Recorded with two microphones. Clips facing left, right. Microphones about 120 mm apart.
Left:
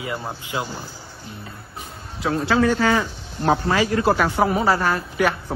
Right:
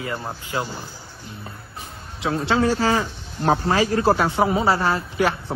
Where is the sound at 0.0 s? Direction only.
10° left (ahead or behind).